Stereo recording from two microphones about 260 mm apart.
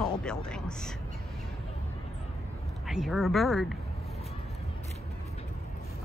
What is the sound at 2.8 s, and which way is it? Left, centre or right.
Speech, centre.